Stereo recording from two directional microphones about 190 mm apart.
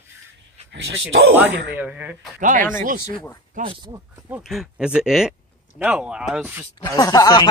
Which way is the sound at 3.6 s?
25° right (ahead or behind).